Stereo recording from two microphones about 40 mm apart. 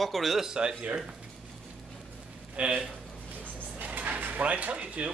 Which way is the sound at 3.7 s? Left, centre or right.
Right.